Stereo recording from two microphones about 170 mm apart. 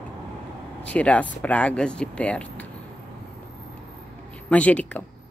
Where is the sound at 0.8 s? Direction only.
10° left (ahead or behind).